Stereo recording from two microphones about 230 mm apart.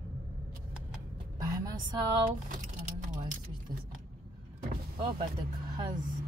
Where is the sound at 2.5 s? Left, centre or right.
Right.